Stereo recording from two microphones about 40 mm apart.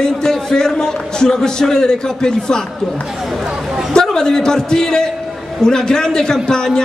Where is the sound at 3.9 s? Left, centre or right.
Centre.